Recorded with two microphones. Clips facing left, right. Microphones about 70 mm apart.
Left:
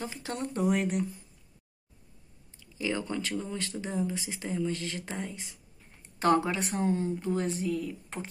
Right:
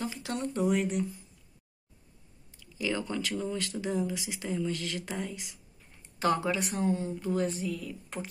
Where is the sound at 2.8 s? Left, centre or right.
Left.